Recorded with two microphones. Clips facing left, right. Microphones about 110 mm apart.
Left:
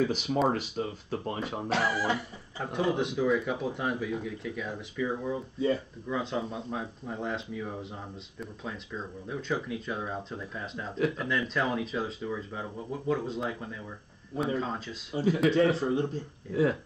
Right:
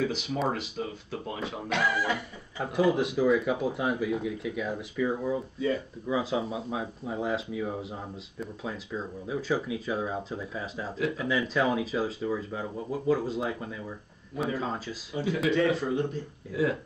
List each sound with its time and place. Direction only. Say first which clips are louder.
0.0 s speech: left 2 dB; 40° left (ahead or behind)
2.6 s speech: right 4 dB; 5° right (ahead or behind)
15.1 s speech: left 2 dB; 30° left (ahead or behind)